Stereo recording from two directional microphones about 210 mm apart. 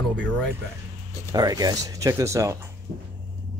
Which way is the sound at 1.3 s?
15° right (ahead or behind).